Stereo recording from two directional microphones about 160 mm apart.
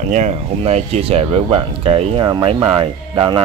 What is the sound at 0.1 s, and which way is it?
Speech, 45° right (ahead or behind).